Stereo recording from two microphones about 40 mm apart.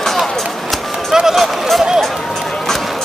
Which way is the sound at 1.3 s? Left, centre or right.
Centre.